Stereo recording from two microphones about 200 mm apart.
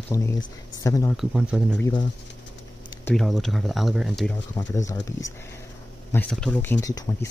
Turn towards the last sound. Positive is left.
turn(degrees=15)  # may be behind; listen again after turning